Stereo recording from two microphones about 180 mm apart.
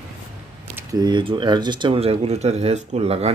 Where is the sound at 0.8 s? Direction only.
20° right (ahead or behind).